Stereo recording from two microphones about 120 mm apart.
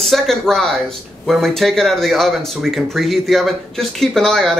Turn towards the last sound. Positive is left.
turn(degrees=0)  # may be behind; listen again after turning